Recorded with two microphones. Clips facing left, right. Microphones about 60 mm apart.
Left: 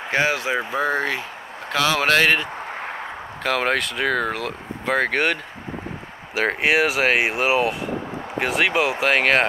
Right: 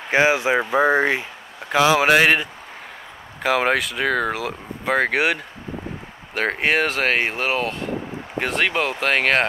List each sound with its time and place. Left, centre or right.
0.1 s speech: centre
3.4 s speech: centre